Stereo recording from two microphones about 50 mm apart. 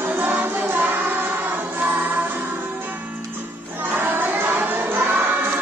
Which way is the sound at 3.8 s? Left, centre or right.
Right.